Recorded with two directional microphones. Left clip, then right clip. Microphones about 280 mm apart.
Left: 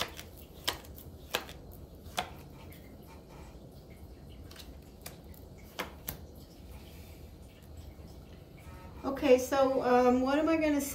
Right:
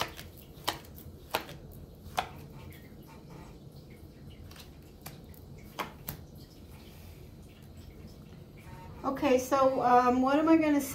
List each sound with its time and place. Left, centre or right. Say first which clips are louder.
0.0 s chopping: right 2 dB; centre
2.2 s chopping: right 3 dB; centre
9.0 s a woman's voice: left 2 dB; right